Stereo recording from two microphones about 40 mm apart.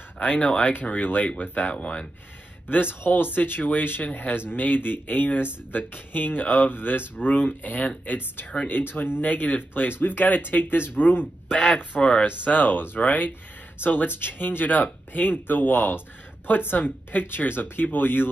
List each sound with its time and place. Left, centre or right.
0.2 s speech: left
2.7 s speech: left
6.7 s speech: left
8.6 s speech: left
9.2 s speech: left
12.0 s speech: left
12.4 s speech: left
13.7 s speech: left